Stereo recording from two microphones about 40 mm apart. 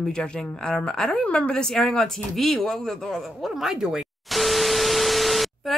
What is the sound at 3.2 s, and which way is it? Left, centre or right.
Speech, centre.